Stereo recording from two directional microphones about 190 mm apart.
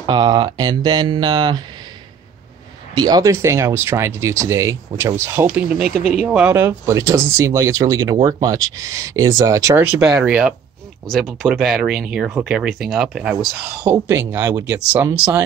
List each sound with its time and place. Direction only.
0.0 s speech: 20° right (ahead or behind)
2.9 s speech: 20° right (ahead or behind); by 13.7 s 5° right (ahead or behind)
13.8 s speech: 15° right (ahead or behind)